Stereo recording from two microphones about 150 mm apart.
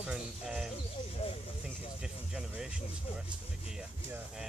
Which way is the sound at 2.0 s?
5° right (ahead or behind).